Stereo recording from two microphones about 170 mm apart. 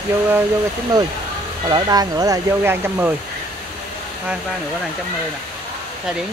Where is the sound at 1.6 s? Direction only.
25° right (ahead or behind).